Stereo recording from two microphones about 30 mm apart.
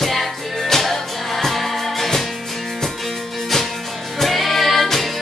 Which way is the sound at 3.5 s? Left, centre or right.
Centre.